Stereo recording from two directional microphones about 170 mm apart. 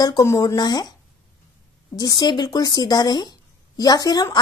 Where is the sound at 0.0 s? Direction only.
20° left (ahead or behind).